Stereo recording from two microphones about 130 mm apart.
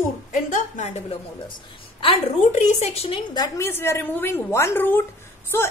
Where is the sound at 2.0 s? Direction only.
50° left (ahead or behind).